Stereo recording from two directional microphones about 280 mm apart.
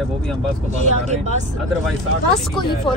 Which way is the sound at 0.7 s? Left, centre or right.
Right.